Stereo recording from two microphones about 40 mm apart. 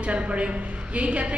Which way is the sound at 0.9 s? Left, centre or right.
Right.